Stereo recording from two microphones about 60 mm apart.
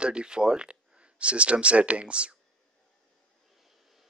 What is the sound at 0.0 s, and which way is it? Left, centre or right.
Speech, centre.